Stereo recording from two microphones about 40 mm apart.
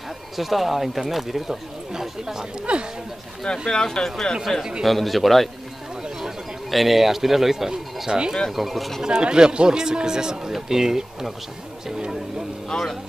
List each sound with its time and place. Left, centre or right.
0.4 s speech: centre
2.7 s speech: right
3.6 s speech: centre
4.8 s speech: centre
9.0 s speech: centre
12.7 s speech: centre